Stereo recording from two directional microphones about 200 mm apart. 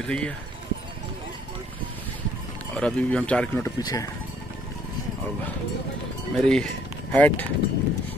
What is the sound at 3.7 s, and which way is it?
Speech, 20° left (ahead or behind).